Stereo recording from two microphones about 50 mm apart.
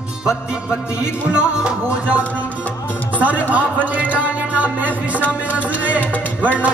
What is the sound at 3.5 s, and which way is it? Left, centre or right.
Music, right.